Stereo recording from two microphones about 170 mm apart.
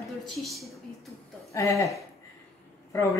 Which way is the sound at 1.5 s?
20° left (ahead or behind).